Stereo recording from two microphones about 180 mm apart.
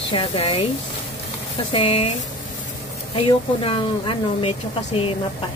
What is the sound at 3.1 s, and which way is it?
Speech, 30° left (ahead or behind).